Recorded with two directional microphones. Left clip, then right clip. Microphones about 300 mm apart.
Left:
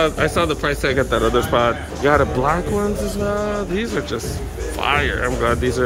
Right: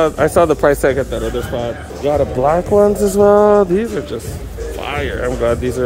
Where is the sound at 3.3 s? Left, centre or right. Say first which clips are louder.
Right 12 dB; right.